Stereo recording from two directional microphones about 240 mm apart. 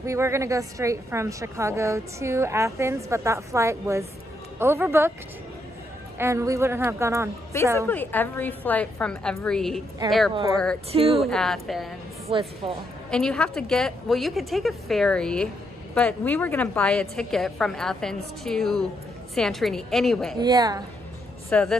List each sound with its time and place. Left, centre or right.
0.0 s a woman's voice: centre
6.1 s a woman's voice: centre
7.5 s a woman's voice: centre
10.9 s speech: right
11.1 s a woman's voice: centre
12.3 s speech: right
13.1 s a woman's voice: centre
20.3 s a woman's voice: centre
21.5 s speech: centre